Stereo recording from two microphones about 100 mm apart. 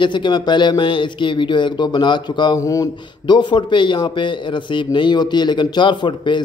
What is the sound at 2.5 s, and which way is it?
Speech, 35° left (ahead or behind).